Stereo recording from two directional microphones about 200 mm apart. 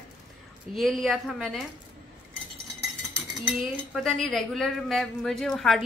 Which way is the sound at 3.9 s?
Centre (ahead or behind).